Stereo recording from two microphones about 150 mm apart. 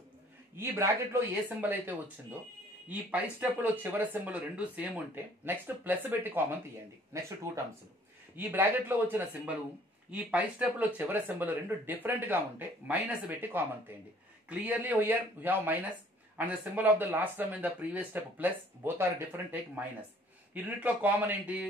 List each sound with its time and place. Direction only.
0.6 s speech: 15° right (ahead or behind)
8.4 s speech: 15° right (ahead or behind)